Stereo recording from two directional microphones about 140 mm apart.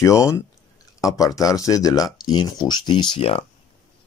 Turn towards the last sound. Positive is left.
turn(degrees=45)  # may be behind; listen again after turning